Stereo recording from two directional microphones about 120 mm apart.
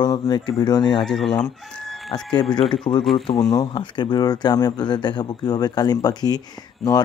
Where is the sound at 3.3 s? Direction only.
35° left (ahead or behind).